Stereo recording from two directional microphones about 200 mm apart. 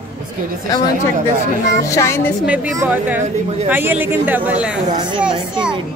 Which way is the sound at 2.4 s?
10° right (ahead or behind).